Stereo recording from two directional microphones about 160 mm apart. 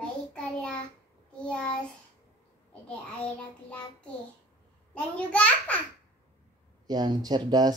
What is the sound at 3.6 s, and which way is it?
A child's voice, 5° left (ahead or behind).